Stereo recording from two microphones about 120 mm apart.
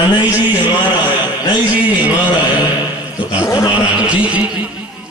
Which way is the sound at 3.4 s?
25° left (ahead or behind).